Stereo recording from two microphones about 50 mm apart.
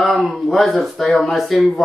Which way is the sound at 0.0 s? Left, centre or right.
Centre.